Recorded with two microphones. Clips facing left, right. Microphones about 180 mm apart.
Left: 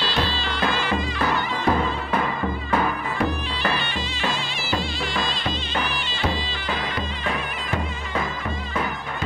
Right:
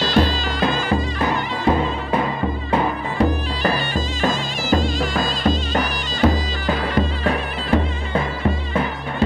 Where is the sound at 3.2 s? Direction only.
40° right (ahead or behind).